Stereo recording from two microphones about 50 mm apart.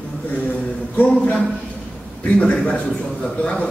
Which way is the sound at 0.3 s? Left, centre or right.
Left.